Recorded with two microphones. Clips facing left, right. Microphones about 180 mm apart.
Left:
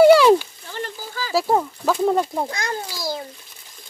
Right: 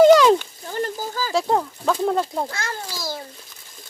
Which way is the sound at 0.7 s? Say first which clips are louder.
Right 5 dB; 45° right (ahead or behind).